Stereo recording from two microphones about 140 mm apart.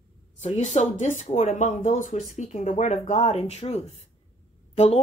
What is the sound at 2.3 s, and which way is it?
A woman's voice, 55° left (ahead or behind).